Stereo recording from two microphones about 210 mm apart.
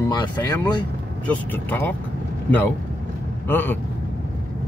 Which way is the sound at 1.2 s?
5° left (ahead or behind).